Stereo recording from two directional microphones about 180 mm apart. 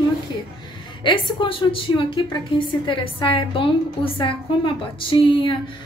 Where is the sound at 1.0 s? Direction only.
25° left (ahead or behind).